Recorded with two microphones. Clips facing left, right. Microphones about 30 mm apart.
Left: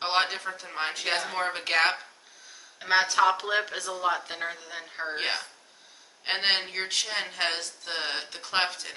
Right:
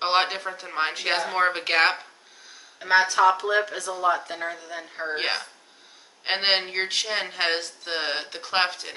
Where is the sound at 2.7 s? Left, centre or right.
Centre.